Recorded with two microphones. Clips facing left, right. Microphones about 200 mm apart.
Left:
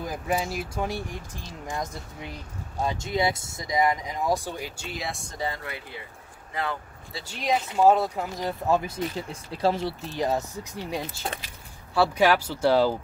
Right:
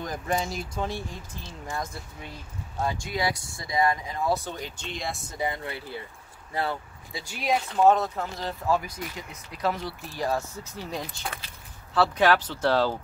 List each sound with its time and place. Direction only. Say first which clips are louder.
0.0 s speech: left 1 dB; 5° left (ahead or behind)
5.4 s speech: right 2 dB; 20° right (ahead or behind)
7.2 s speech: even; 10° right (ahead or behind)
7.7 s speech: left 1 dB; 10° left (ahead or behind)
11.9 s speech: left 1 dB; 10° left (ahead or behind)